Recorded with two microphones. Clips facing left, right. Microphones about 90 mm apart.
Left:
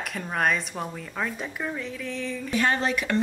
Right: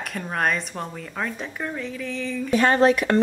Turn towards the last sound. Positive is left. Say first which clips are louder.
# right 7 dB
turn(degrees=-50)  # may be behind; listen again after turning